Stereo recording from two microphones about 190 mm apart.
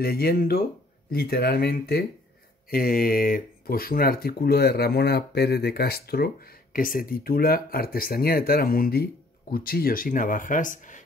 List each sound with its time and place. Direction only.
0.0 s speech: 55° left (ahead or behind)